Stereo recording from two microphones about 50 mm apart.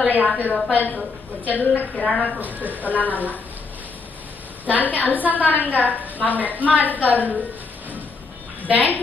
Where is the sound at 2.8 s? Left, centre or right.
Left.